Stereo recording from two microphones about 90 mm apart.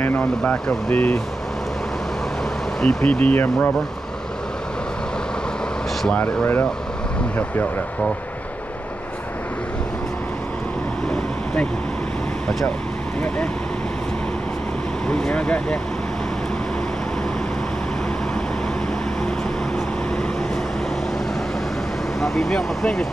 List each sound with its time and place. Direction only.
0.0 s speech: 20° left (ahead or behind)
2.8 s speech: 10° left (ahead or behind)
6.1 s speech: 20° left (ahead or behind)
12.4 s speech: 10° left (ahead or behind)
15.0 s speech: 10° left (ahead or behind)
22.2 s speech: centre (ahead or behind)